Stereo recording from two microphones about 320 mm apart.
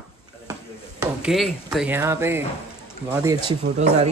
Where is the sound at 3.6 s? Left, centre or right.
Right.